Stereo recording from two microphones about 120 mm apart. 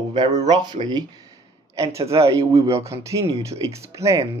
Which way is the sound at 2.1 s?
25° right (ahead or behind).